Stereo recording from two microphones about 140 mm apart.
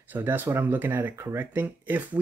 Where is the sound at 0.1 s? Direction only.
15° right (ahead or behind).